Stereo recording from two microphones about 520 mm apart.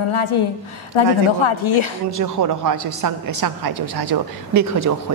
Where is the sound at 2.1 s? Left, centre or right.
Right.